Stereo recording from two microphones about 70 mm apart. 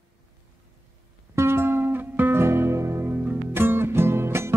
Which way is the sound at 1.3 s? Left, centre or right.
Right.